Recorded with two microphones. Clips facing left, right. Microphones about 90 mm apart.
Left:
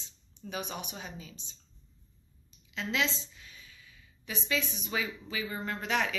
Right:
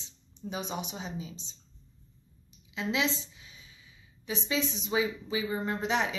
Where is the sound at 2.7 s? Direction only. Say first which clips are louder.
Right 2 dB; 15° right (ahead or behind).